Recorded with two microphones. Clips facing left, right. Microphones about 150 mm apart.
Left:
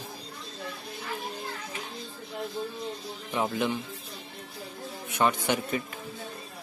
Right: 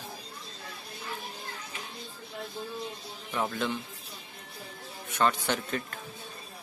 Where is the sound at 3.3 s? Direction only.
15° left (ahead or behind).